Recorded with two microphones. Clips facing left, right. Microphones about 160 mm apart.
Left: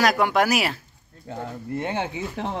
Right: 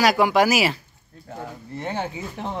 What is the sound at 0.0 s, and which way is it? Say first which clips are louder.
Speech: right 2 dB; centre (ahead or behind).